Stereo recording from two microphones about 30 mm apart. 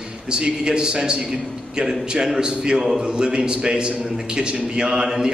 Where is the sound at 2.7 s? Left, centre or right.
Centre.